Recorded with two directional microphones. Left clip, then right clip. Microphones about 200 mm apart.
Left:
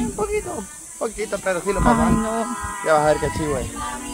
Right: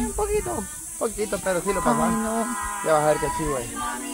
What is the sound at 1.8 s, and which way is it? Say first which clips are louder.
Speech: left 6 dB; 20° left (ahead or behind).